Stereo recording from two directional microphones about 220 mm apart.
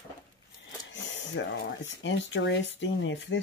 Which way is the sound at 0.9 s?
55° left (ahead or behind).